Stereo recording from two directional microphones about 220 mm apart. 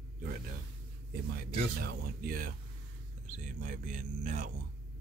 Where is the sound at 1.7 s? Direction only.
45° right (ahead or behind).